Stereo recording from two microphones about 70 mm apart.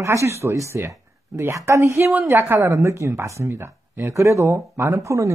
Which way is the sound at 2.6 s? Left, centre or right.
Right.